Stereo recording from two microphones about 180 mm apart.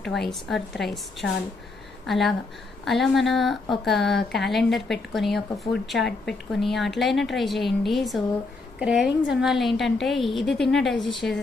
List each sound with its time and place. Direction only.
0.0 s a woman's voice: centre (ahead or behind)